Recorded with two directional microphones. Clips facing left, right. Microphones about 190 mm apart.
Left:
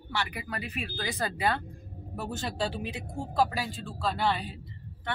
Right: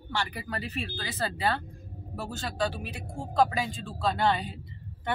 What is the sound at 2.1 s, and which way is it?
Speech, 25° left (ahead or behind).